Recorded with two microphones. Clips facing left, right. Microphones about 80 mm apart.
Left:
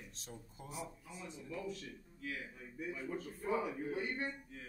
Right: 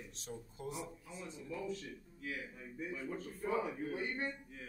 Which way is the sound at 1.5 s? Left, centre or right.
Right.